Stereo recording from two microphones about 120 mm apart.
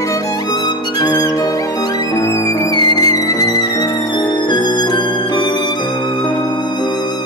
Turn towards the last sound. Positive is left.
turn(degrees=35)  # may be behind; listen again after turning